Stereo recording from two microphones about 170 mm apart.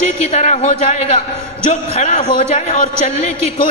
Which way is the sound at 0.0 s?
40° left (ahead or behind).